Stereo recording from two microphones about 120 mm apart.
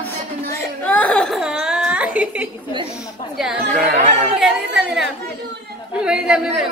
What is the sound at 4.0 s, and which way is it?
Speech, 70° right (ahead or behind).